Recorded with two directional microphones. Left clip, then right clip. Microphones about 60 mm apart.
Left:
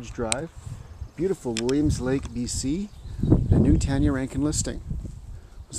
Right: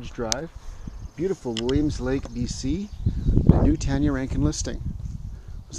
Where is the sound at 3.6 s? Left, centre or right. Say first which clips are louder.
Even; centre.